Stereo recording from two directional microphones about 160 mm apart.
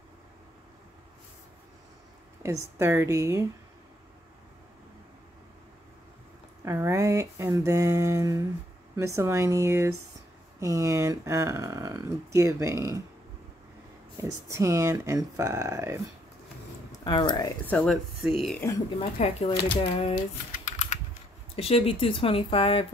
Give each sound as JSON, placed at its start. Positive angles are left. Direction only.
{"t": 2.4, "sound": "a woman's voice", "side_deg": -20}
{"t": 6.6, "sound": "a woman's voice", "side_deg": -15}
{"t": 14.1, "sound": "speech", "side_deg": -20}
{"t": 17.0, "sound": "speech", "side_deg": 30}
{"t": 17.6, "sound": "speech", "side_deg": 5}
{"t": 19.1, "sound": "speech", "side_deg": 40}
{"t": 19.5, "sound": "speech", "side_deg": 70}
{"t": 19.8, "sound": "speech", "side_deg": 40}
{"t": 20.2, "sound": "typing", "side_deg": 50}
{"t": 21.5, "sound": "speech", "side_deg": 35}